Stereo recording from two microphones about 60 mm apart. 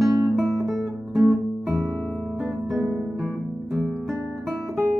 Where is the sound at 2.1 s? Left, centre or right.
Left.